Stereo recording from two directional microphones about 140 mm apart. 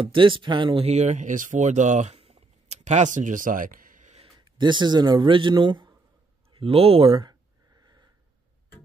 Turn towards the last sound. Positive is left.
turn(degrees=-40)  # may be behind; listen again after turning